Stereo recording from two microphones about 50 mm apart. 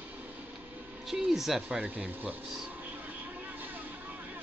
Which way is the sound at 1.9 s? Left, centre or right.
Right.